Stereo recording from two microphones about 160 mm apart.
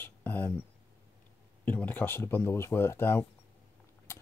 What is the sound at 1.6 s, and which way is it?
Speech, 10° left (ahead or behind).